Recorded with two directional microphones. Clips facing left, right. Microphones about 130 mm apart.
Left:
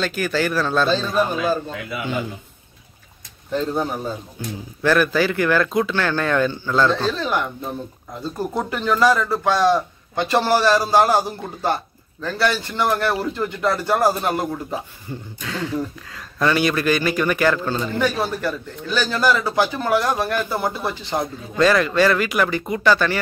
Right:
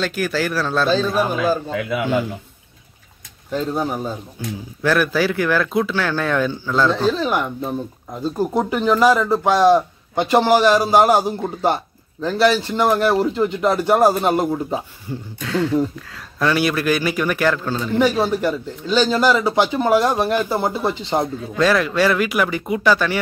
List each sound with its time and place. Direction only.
0.0 s a man's voice: 5° right (ahead or behind)
1.7 s a man's voice: 90° right
3.5 s a man's voice: 10° right (ahead or behind)
15.0 s a man's voice: centre (ahead or behind)
17.9 s a man's voice: 15° right (ahead or behind)
21.5 s a man's voice: centre (ahead or behind)